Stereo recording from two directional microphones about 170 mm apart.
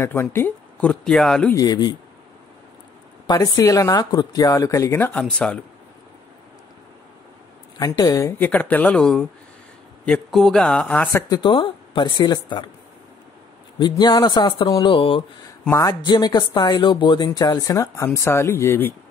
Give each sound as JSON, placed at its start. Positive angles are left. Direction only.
{"t": 0.0, "sound": "speech", "side_deg": 15}
{"t": 1.5, "sound": "speech", "side_deg": 20}
{"t": 3.3, "sound": "speech", "side_deg": 20}
{"t": 7.8, "sound": "speech", "side_deg": 20}
{"t": 11.1, "sound": "speech", "side_deg": 20}
{"t": 13.7, "sound": "speech", "side_deg": 25}